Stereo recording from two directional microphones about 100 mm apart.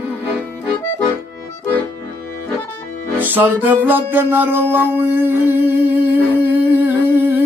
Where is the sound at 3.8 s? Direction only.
20° right (ahead or behind).